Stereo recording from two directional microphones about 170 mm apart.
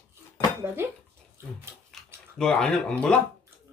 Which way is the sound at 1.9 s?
5° left (ahead or behind).